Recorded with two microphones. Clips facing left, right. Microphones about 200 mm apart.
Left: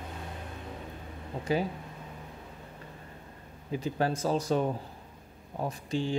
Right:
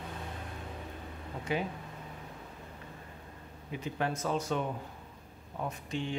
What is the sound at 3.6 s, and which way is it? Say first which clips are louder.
Speech: left 5 dB; 35° left (ahead or behind).